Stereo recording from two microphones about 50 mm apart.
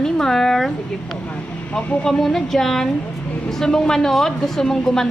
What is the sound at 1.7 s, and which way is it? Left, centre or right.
Speech, left.